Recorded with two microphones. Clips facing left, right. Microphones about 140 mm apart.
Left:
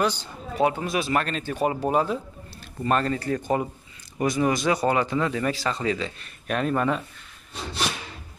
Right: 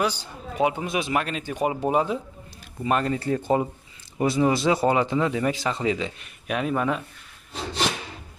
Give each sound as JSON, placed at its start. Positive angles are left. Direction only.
{"t": 0.0, "sound": "speech", "side_deg": -10}
{"t": 3.2, "sound": "speech", "side_deg": -25}